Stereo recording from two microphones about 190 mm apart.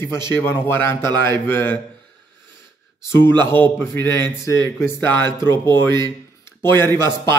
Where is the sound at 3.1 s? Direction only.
10° left (ahead or behind).